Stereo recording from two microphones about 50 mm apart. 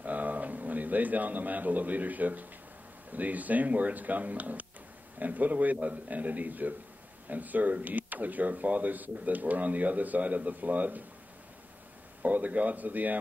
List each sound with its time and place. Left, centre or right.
0.0 s speech: right
12.2 s speech: right